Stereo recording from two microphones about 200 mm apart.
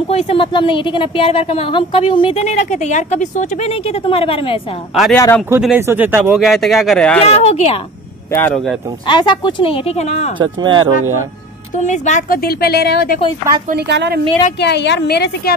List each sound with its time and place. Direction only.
0.1 s a woman's voice: 30° left (ahead or behind)
5.1 s speech: 15° left (ahead or behind)
5.6 s speech: 10° right (ahead or behind)
7.2 s speech: 30° left (ahead or behind)
8.3 s speech: 10° left (ahead or behind)
9.0 s a woman's voice: 25° left (ahead or behind)
10.4 s speech: 20° right (ahead or behind)
11.7 s a woman's voice: 35° left (ahead or behind); by 13.2 s 50° left (ahead or behind)
13.7 s a woman's voice: 55° right (ahead or behind)
14.6 s a woman's voice: 60° left (ahead or behind)